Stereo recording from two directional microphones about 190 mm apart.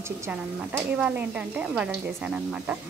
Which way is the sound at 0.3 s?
5° right (ahead or behind).